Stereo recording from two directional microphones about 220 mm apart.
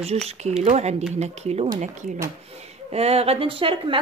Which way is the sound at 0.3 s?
30° right (ahead or behind).